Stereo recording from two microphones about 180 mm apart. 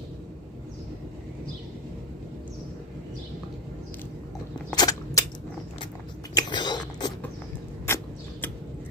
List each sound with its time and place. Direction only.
4.7 s a sound: 20° left (ahead or behind)
6.3 s biting: 25° left (ahead or behind)
7.8 s vehicle: 10° left (ahead or behind)